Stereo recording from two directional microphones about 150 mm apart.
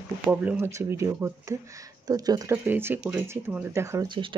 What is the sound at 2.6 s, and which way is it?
Speech, 15° right (ahead or behind).